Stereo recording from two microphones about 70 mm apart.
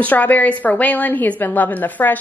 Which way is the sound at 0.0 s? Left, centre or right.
Left.